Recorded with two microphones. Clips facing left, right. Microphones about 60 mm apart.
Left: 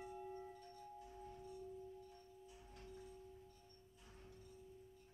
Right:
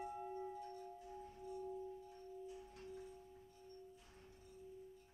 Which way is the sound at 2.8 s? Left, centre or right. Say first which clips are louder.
Right 2 dB; centre.